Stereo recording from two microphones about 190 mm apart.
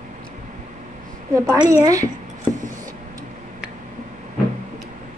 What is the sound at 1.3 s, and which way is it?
Speech, 15° right (ahead or behind).